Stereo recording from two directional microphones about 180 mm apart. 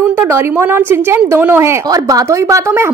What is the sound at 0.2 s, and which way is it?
A woman's voice, 15° right (ahead or behind).